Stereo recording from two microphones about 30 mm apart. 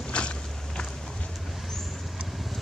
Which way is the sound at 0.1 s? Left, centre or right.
Left.